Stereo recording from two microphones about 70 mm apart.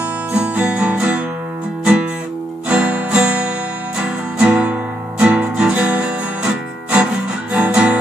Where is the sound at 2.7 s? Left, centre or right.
Centre.